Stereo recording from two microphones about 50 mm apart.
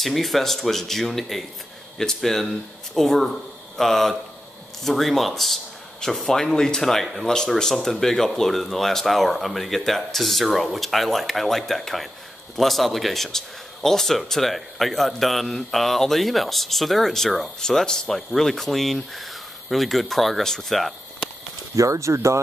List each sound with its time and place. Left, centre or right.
0.0 s speech: centre
21.7 s speech: right